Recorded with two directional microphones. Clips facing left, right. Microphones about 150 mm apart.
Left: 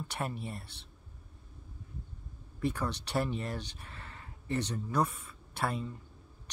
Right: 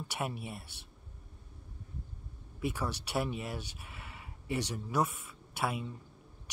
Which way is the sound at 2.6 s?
10° right (ahead or behind).